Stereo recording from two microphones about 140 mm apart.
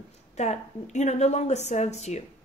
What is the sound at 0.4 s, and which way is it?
A woman's voice, 55° left (ahead or behind).